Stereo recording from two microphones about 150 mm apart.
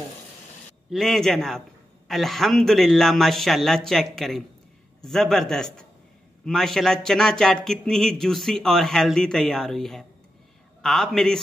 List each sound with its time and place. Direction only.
0.8 s speech: centre (ahead or behind)